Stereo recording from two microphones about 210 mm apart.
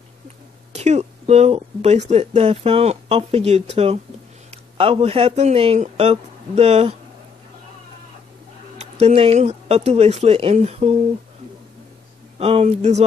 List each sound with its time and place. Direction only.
0.7 s a man's voice: 30° right (ahead or behind)
8.7 s speech: 30° right (ahead or behind)
12.4 s speech: 30° right (ahead or behind)